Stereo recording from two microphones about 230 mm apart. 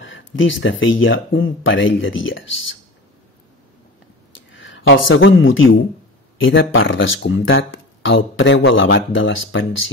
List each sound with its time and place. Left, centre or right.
0.0 s speech: left
4.5 s speech: left